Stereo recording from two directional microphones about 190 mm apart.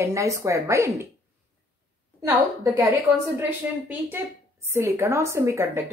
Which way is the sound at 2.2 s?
10° right (ahead or behind).